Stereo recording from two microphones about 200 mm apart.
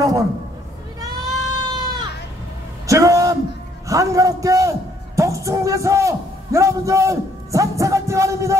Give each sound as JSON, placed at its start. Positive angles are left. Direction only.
{"t": 0.0, "sound": "speech", "side_deg": -15}
{"t": 1.6, "sound": "goat", "side_deg": -20}
{"t": 2.9, "sound": "a sound", "side_deg": -15}
{"t": 3.9, "sound": "music", "side_deg": -15}